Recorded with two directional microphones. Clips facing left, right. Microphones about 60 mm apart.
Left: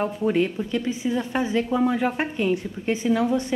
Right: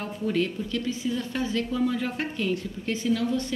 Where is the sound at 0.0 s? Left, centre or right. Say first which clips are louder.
Left 5 dB; left.